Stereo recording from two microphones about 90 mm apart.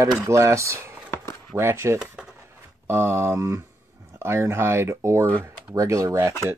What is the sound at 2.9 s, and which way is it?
Speech, 25° right (ahead or behind).